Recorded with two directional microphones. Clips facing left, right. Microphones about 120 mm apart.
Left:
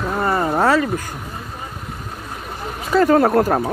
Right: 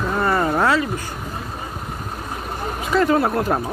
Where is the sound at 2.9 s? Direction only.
45° left (ahead or behind).